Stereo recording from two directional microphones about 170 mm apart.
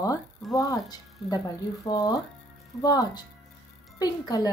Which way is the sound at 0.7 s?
20° left (ahead or behind).